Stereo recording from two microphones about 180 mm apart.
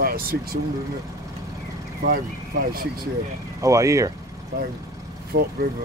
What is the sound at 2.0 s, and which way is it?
Speech, 55° right (ahead or behind).